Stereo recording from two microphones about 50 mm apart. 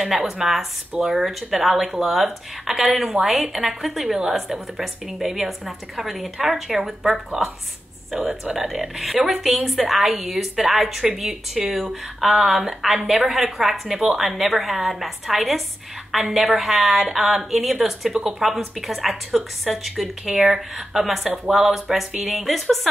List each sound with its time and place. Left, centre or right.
0.0 s a woman's voice: centre
4.0 s a woman's voice: centre
4.4 s a woman's voice: centre
8.3 s a woman's voice: centre
8.6 s a woman's voice: centre
20.2 s a woman's voice: centre